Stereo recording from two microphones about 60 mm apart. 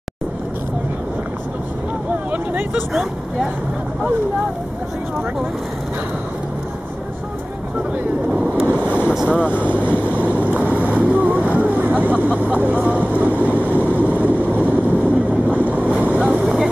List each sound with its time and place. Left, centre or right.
2.3 s vehicle: right
8.3 s speech: centre
8.7 s vehicle: right
9.1 s speech: centre
10.0 s boat: right
16.3 s vehicle: centre